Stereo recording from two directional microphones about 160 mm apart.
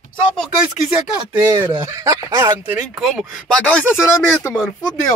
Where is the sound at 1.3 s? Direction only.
20° right (ahead or behind).